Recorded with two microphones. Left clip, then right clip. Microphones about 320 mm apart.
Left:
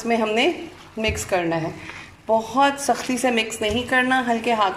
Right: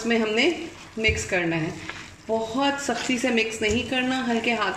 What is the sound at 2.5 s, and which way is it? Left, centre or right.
Speech, left.